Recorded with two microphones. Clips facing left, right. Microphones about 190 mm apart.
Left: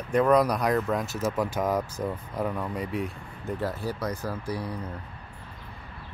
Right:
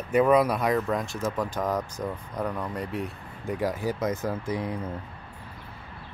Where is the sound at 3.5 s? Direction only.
15° right (ahead or behind).